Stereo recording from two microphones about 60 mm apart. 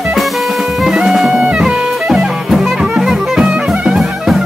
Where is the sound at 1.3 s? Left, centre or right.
Centre.